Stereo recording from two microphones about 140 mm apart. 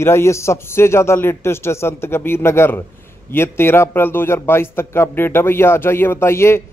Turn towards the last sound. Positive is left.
turn(degrees=20)  # may be behind; listen again after turning